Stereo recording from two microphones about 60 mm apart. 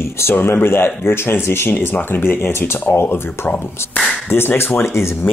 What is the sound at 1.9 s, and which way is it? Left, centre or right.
Speech, left.